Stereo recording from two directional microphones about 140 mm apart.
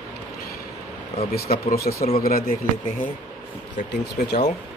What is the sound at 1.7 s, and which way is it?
Speech, 90° left.